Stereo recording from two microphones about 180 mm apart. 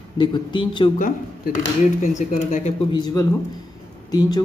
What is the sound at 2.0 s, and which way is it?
Speech, 45° left (ahead or behind).